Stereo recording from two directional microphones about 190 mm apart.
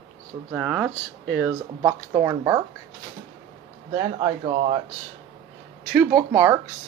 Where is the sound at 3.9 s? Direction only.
25° right (ahead or behind).